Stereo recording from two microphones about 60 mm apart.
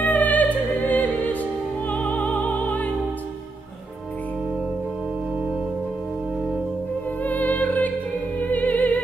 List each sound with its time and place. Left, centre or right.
0.0 s music: left
7.2 s music: left